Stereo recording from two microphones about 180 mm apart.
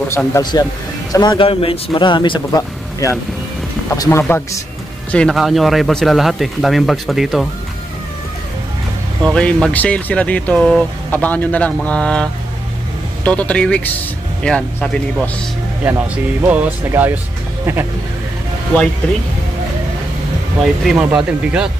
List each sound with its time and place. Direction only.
0.1 s speech: 15° left (ahead or behind)
5.1 s speech: centre (ahead or behind)
9.2 s speech: 5° left (ahead or behind)
15.8 s speech: 10° right (ahead or behind)
20.8 s speech: 5° right (ahead or behind)